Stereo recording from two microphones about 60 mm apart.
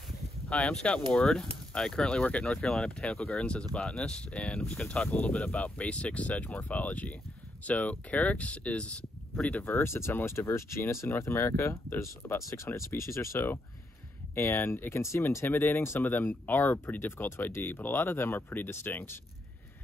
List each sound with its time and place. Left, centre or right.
0.5 s speech: centre
9.6 s speech: left
9.8 s speech: left
12.4 s speech: left
15.4 s speech: left